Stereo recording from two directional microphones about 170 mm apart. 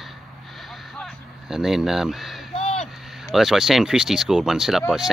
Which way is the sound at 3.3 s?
Centre (ahead or behind).